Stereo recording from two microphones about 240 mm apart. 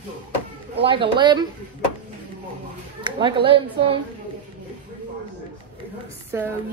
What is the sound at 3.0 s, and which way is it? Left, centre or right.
Speech, right.